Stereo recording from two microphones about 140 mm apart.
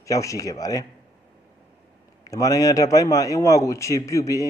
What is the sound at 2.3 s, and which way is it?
A man's voice, 25° left (ahead or behind).